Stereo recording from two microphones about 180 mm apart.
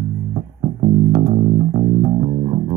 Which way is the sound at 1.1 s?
30° right (ahead or behind).